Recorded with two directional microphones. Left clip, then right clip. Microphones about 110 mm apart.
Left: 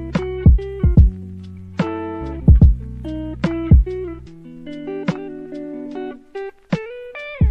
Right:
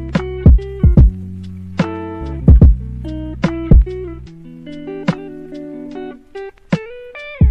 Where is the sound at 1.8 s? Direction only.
35° right (ahead or behind).